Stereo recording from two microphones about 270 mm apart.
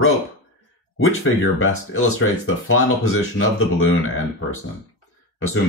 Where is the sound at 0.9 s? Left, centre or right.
Left.